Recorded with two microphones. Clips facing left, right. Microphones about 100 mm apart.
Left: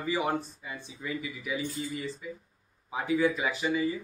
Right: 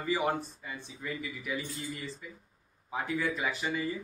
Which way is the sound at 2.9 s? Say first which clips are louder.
Left 5 dB; 10° left (ahead or behind).